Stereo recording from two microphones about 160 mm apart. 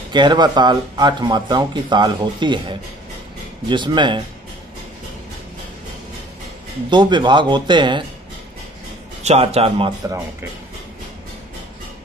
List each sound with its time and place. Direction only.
0.1 s speech: 30° right (ahead or behind)
6.9 s speech: 30° right (ahead or behind)
9.2 s a man's voice: 40° right (ahead or behind)